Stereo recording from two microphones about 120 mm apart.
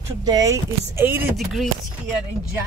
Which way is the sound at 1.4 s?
Centre (ahead or behind).